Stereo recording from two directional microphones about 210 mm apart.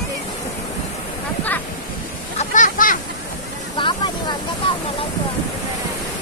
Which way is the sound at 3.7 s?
20° left (ahead or behind).